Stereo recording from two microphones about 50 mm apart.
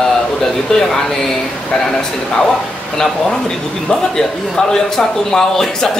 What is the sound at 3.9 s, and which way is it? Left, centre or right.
A man's voice, centre.